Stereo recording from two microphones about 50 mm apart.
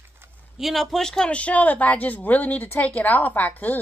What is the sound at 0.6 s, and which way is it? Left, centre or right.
Speech, centre.